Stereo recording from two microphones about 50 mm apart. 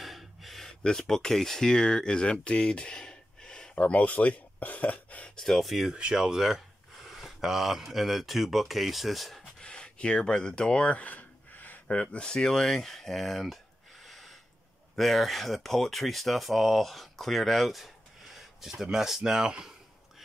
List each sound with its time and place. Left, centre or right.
0.0 s a sound: centre
0.8 s speech: centre
3.7 s speech: left
5.4 s speech: centre
5.9 s speech: centre
9.6 s a sound: centre; by 11.8 s left
11.9 s speech: left; by 13.6 s centre
14.0 s snort: centre
15.0 s speech: centre